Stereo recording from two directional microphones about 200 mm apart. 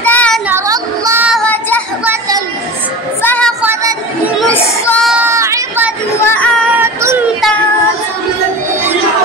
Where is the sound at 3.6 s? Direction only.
15° right (ahead or behind).